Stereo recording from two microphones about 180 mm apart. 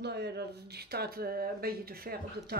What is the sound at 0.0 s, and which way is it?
Speech, 65° right (ahead or behind).